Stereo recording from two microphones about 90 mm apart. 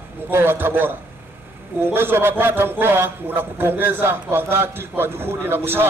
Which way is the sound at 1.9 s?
25° right (ahead or behind).